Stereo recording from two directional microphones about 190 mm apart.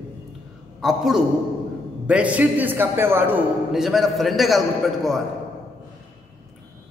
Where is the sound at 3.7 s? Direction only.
Centre (ahead or behind).